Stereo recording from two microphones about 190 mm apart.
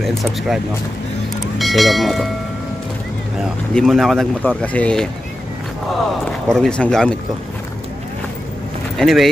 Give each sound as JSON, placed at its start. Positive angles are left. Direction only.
{"t": 0.0, "sound": "speech", "side_deg": 0}
{"t": 3.7, "sound": "speech", "side_deg": 0}
{"t": 6.4, "sound": "speech", "side_deg": 0}
{"t": 8.9, "sound": "speech", "side_deg": 0}